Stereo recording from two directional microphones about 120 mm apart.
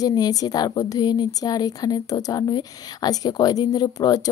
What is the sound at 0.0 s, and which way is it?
A woman's voice, 30° left (ahead or behind).